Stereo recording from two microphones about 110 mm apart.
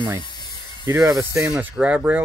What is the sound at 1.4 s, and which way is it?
Speech, 10° right (ahead or behind).